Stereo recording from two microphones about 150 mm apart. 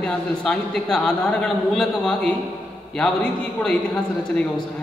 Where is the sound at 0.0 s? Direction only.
5° left (ahead or behind).